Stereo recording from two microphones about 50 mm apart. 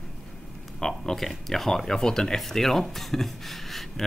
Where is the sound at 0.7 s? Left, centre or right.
Centre.